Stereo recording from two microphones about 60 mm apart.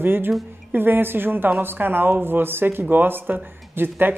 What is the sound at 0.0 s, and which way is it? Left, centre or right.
A woman's voice, right.